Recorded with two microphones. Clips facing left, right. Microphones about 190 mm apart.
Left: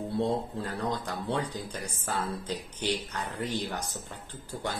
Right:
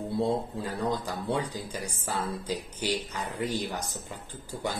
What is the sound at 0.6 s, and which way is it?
Speech, 10° right (ahead or behind).